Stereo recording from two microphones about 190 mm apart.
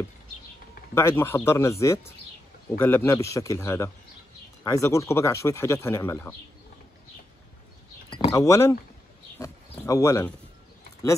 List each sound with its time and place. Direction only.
0.9 s speech: 15° left (ahead or behind)
8.1 s speech: 20° left (ahead or behind)